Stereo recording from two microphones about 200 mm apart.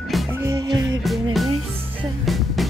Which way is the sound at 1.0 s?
Centre (ahead or behind).